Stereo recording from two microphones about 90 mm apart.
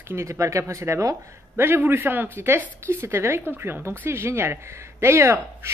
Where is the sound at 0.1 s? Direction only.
35° right (ahead or behind).